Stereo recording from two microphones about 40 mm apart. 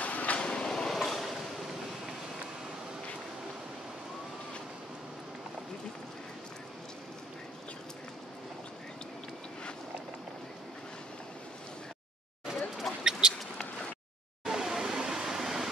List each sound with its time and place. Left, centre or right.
0.0 s vehicle: left
0.7 s vehicle: centre
0.9 s vehicle: centre
12.9 s rodents: centre
14.4 s a sound: centre